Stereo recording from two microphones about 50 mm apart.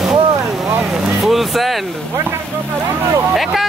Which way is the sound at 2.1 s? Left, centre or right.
Right.